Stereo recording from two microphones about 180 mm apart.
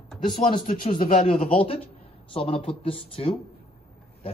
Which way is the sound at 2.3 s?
30° left (ahead or behind).